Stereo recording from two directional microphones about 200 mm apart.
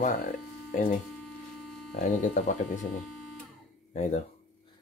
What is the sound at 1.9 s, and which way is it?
Speech, 40° left (ahead or behind).